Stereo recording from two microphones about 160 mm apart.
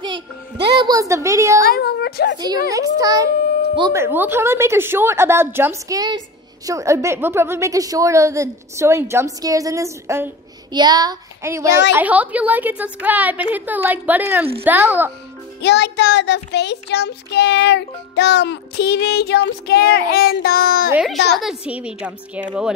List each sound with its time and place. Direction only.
0.7 s child singing: 25° right (ahead or behind)
1.6 s a woman's voice: 75° left (ahead or behind)
2.3 s child singing: 25° right (ahead or behind)
3.9 s a woman's voice: 15° right (ahead or behind)
10.7 s child singing: 25° right (ahead or behind)
11.9 s a woman's voice: 10° right (ahead or behind)
15.6 s child singing: 90° left; by 20.9 s 70° left (ahead or behind)
20.9 s a child's voice: 5° right (ahead or behind)